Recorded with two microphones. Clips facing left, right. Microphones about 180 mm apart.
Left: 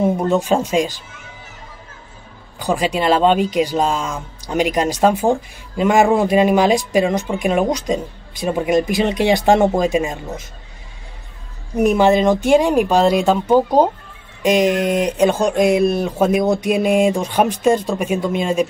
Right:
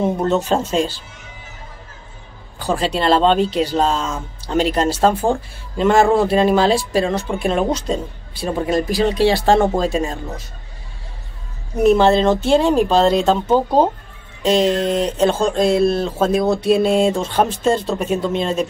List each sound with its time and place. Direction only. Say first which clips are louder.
0.2 s speech: left 1 dB; 10° left (ahead or behind)
2.6 s speech: left 1 dB; 15° left (ahead or behind)
11.8 s speech: right 1 dB; 15° left (ahead or behind)